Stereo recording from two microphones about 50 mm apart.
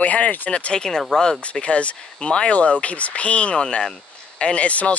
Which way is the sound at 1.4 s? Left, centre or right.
Left.